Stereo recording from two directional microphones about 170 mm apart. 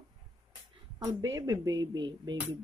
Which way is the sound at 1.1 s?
25° right (ahead or behind).